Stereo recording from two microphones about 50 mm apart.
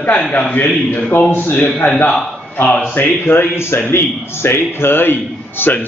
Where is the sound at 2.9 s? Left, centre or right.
Left.